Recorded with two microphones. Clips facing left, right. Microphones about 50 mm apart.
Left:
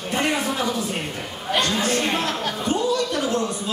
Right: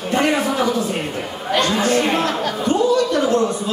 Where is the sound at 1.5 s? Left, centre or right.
Centre.